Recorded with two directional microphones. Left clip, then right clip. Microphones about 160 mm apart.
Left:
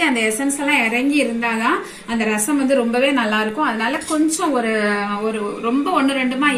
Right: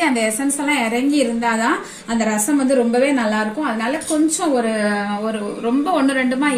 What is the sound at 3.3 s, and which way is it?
A woman's voice, 20° right (ahead or behind).